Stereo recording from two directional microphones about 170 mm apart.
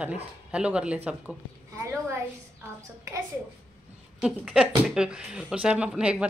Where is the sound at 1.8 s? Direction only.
15° right (ahead or behind).